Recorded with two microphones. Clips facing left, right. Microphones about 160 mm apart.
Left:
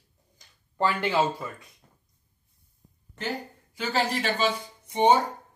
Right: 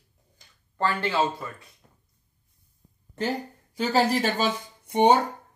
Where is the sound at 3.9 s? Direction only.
40° right (ahead or behind).